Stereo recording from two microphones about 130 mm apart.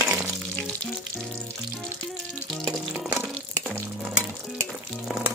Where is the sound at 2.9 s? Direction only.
5° right (ahead or behind).